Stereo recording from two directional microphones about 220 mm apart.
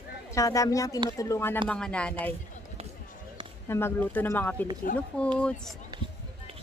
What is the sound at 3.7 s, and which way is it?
A woman's voice, 10° left (ahead or behind).